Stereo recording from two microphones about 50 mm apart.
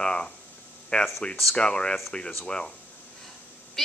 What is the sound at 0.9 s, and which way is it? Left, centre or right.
Speech, left.